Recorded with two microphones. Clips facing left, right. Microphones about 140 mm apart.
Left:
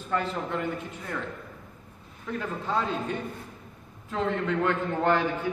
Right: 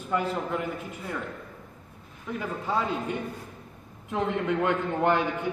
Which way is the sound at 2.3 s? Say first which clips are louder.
Even; 10° right (ahead or behind).